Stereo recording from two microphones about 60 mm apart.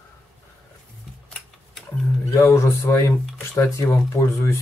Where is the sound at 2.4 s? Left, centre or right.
Left.